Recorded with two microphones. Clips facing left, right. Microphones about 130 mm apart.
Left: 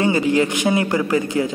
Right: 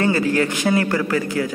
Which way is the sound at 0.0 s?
20° left (ahead or behind).